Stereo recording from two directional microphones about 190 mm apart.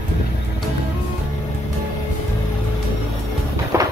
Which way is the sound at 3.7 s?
15° right (ahead or behind).